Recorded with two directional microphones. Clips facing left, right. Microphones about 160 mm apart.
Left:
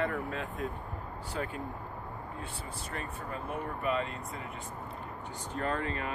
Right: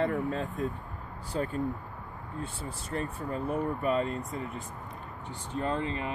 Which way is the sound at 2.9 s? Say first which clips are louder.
Right 7 dB; 35° right (ahead or behind).